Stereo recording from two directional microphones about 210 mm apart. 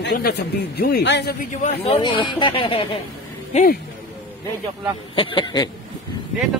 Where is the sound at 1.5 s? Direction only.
30° left (ahead or behind).